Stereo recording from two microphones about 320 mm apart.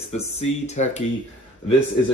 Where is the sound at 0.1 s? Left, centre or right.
Left.